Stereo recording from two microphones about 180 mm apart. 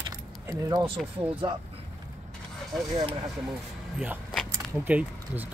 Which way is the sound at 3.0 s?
25° right (ahead or behind).